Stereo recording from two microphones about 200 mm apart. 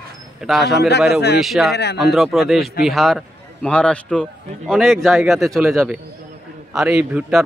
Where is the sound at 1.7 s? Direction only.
55° left (ahead or behind).